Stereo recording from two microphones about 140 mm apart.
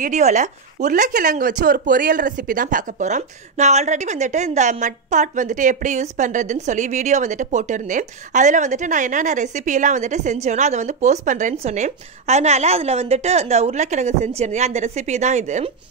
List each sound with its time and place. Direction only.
0.0 s a woman's voice: 60° right (ahead or behind)